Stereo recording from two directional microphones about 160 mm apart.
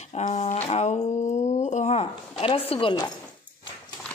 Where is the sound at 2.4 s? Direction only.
35° left (ahead or behind).